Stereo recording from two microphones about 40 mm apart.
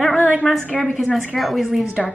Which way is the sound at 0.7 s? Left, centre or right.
Left.